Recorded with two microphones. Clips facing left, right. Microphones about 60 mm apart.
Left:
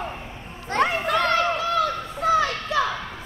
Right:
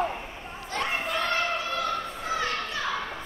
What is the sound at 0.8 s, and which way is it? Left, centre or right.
Children playing, left.